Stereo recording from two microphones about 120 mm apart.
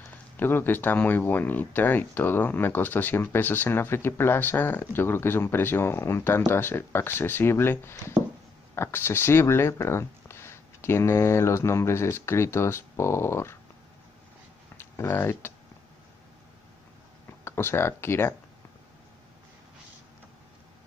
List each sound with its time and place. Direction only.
0.4 s speech: 15° left (ahead or behind)
14.8 s speech: 20° left (ahead or behind)
17.5 s speech: 20° left (ahead or behind)